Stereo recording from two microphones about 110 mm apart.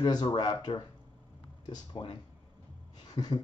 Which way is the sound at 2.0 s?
45° left (ahead or behind).